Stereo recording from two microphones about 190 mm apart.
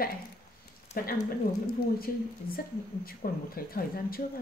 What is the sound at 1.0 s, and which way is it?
Speech, 50° left (ahead or behind).